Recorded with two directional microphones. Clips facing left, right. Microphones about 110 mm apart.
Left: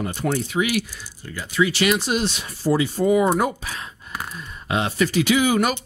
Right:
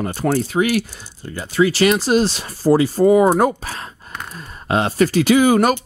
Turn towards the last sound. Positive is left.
turn(degrees=-40)  # may be behind; listen again after turning